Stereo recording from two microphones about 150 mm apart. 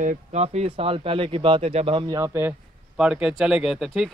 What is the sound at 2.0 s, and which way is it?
Speech, 20° right (ahead or behind).